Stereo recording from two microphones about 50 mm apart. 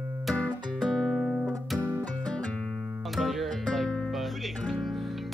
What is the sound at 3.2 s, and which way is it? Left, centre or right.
Music, centre.